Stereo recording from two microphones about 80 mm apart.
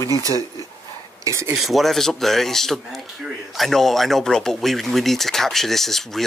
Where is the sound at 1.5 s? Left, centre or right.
Centre.